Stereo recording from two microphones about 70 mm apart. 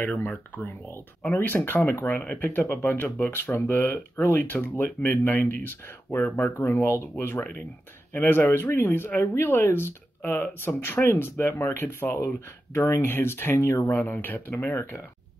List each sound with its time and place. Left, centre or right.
0.0 s speech: left
0.7 s speech: left
12.7 s speech: left